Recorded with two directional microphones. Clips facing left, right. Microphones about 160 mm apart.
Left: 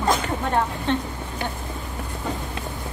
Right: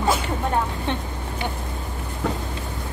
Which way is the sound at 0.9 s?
15° right (ahead or behind).